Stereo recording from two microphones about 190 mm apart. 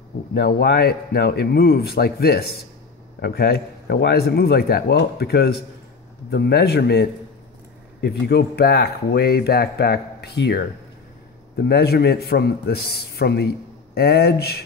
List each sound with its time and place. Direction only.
0.3 s speech: 55° left (ahead or behind)